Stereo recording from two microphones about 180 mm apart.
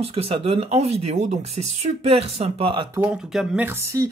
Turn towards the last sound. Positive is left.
turn(degrees=-15)  # may be behind; listen again after turning